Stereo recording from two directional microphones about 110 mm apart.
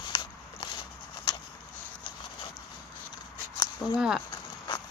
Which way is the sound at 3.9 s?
5° right (ahead or behind).